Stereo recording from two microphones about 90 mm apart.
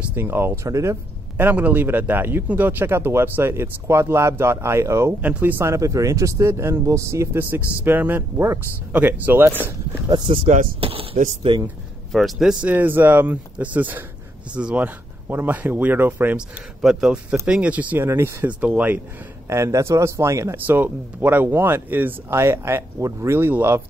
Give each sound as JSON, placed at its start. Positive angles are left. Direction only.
{"t": 0.1, "sound": "a man's voice", "side_deg": -25}
{"t": 0.7, "sound": "speech", "side_deg": -35}
{"t": 1.4, "sound": "a man's voice", "side_deg": -20}
{"t": 5.2, "sound": "a man's voice", "side_deg": -20}
{"t": 10.2, "sound": "speech", "side_deg": -90}
{"t": 12.1, "sound": "speech", "side_deg": 0}
{"t": 12.6, "sound": "a man's voice", "side_deg": -20}
{"t": 16.3, "sound": "speech", "side_deg": -10}
{"t": 19.5, "sound": "speech", "side_deg": -30}
{"t": 20.6, "sound": "a man's voice", "side_deg": -20}